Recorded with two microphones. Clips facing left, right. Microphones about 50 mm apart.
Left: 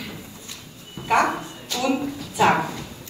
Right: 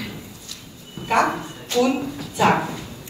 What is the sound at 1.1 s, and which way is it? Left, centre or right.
Speech, centre.